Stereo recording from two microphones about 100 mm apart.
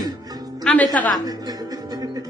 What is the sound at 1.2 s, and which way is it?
Music, 40° right (ahead or behind).